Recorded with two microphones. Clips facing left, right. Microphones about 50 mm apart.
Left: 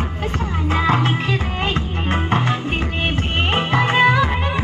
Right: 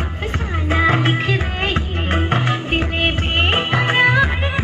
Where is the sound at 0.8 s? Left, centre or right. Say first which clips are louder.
Right 2 dB; right.